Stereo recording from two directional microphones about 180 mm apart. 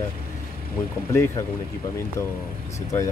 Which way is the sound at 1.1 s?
15° left (ahead or behind).